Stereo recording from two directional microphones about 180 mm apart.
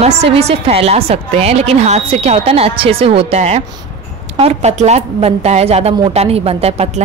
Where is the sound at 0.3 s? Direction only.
35° right (ahead or behind).